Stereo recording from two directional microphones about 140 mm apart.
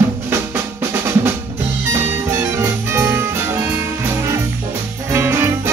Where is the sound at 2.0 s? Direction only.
15° right (ahead or behind).